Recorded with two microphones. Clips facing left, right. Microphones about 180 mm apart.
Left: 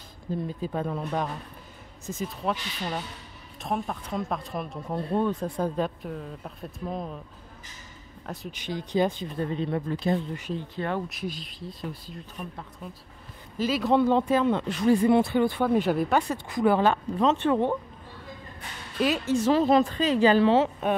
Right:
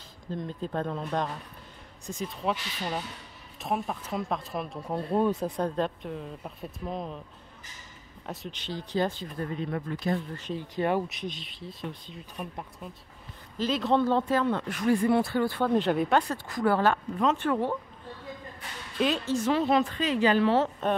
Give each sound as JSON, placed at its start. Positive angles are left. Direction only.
{"t": 0.3, "sound": "speech", "side_deg": 10}
{"t": 8.3, "sound": "speech", "side_deg": 0}
{"t": 8.5, "sound": "speech", "side_deg": 15}
{"t": 10.8, "sound": "speech", "side_deg": -15}
{"t": 11.1, "sound": "speech", "side_deg": 0}
{"t": 16.4, "sound": "speech", "side_deg": 20}
{"t": 18.9, "sound": "speech", "side_deg": 5}
{"t": 19.4, "sound": "speech", "side_deg": 40}
{"t": 20.5, "sound": "speech", "side_deg": 15}